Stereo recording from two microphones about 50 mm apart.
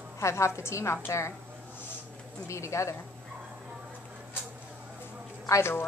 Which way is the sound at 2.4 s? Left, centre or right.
Left.